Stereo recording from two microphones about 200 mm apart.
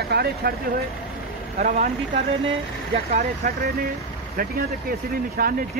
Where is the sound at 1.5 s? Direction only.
40° right (ahead or behind).